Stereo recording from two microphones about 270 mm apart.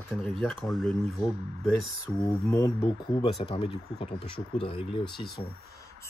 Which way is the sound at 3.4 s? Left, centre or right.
Left.